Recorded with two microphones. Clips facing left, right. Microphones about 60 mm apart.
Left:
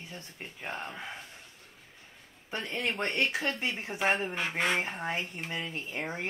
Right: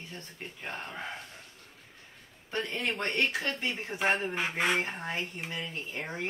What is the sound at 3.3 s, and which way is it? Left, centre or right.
Speech, left.